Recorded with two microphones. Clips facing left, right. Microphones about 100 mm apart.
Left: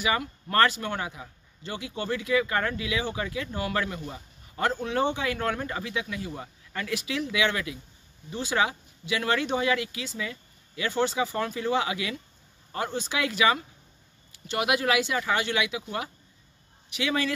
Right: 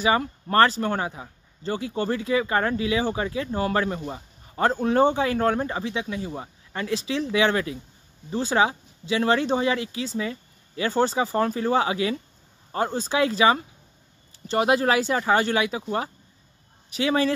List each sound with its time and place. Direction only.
0.0 s speech: 30° right (ahead or behind)